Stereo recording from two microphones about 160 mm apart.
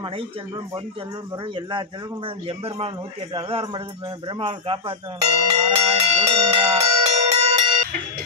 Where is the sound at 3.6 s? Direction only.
25° right (ahead or behind).